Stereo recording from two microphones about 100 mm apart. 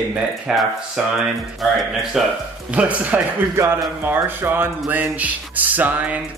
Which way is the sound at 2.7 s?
15° right (ahead or behind).